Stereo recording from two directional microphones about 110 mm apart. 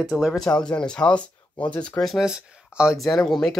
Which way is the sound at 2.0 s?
Centre (ahead or behind).